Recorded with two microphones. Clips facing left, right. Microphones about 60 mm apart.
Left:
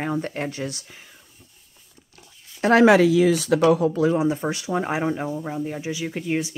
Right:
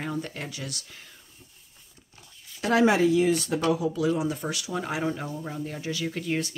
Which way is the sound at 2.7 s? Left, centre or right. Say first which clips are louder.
Left 6 dB; left.